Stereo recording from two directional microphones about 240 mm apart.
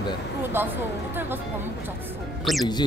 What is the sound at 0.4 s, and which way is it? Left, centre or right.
Speech, centre.